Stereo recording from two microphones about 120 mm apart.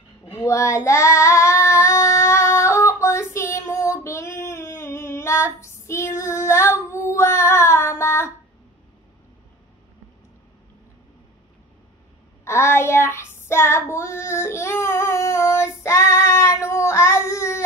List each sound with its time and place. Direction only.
0.3 s child singing: 25° left (ahead or behind)
12.4 s child singing: 20° left (ahead or behind)